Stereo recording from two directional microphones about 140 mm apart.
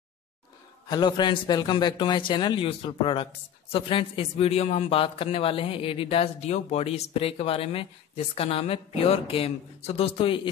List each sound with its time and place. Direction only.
0.8 s a man's voice: 30° left (ahead or behind)